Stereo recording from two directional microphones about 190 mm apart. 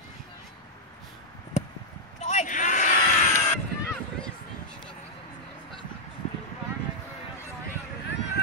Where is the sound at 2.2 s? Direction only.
40° left (ahead or behind).